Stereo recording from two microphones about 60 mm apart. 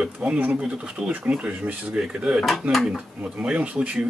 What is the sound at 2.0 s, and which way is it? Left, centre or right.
Speech, centre.